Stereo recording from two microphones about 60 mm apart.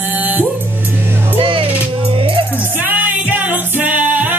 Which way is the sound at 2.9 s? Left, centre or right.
Right.